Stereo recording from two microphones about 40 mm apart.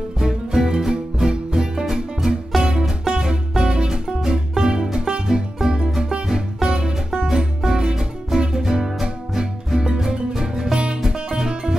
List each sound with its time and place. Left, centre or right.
0.2 s music: centre
2.5 s music: centre
3.1 s music: centre